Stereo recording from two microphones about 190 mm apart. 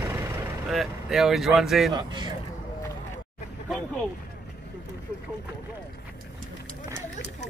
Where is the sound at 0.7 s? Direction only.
Centre (ahead or behind).